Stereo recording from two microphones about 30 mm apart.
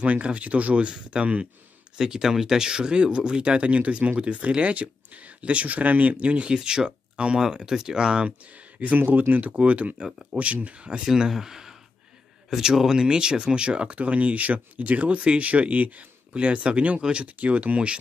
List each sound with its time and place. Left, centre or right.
0.0 s speech: right
2.0 s speech: centre; by 4.2 s right
4.2 s speech: right
6.5 s speech: right
8.5 s a sound: right
8.9 s speech: right
9.5 s speech: right
11.1 s speech: centre; by 13.9 s right
13.9 s speech: right
16.3 s speech: right